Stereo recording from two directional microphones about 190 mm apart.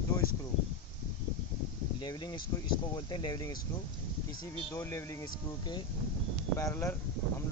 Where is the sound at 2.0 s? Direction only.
25° left (ahead or behind).